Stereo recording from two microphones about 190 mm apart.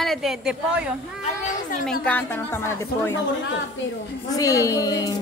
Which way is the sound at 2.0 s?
10° left (ahead or behind).